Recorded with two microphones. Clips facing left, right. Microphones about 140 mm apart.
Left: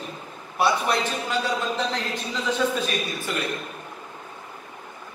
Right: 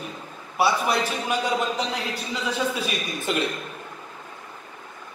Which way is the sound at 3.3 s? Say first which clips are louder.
Right 5 dB; 20° right (ahead or behind).